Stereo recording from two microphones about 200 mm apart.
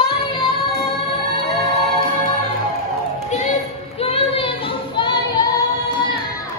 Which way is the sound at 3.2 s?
35° left (ahead or behind).